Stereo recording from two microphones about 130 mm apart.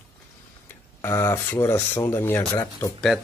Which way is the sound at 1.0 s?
20° left (ahead or behind).